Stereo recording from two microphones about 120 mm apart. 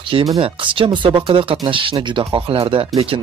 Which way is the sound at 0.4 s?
45° right (ahead or behind).